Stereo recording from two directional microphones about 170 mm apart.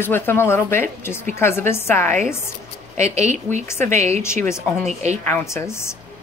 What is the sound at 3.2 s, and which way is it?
Speech, 45° right (ahead or behind).